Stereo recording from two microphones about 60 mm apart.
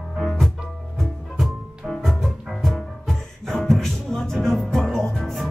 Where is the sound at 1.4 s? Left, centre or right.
Centre.